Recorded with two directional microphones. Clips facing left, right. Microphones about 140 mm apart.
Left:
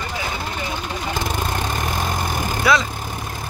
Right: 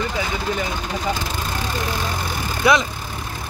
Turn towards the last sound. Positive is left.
turn(degrees=-20)  # may be behind; listen again after turning